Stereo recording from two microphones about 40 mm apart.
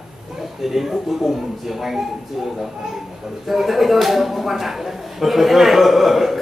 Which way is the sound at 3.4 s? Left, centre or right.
Centre.